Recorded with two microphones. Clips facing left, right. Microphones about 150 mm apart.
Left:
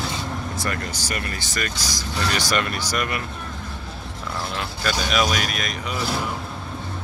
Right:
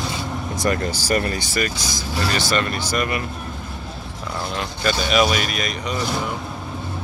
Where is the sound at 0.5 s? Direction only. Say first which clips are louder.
Right 6 dB; 20° right (ahead or behind).